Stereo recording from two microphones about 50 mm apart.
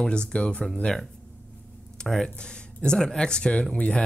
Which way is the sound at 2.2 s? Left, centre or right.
Centre.